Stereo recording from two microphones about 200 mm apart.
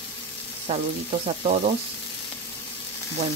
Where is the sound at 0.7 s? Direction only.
25° right (ahead or behind).